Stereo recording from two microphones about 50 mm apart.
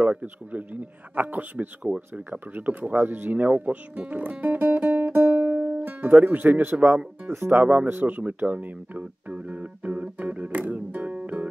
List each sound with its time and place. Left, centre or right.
0.0 s speech: right
7.2 s speech: right
7.6 s a sound: right